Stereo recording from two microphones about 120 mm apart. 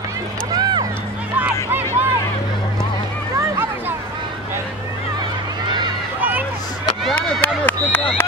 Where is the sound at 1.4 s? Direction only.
15° right (ahead or behind).